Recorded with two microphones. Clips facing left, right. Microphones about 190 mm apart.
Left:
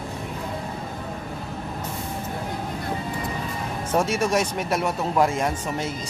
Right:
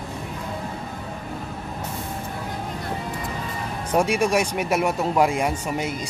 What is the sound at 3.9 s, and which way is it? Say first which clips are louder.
Speech: right 2 dB; 15° right (ahead or behind).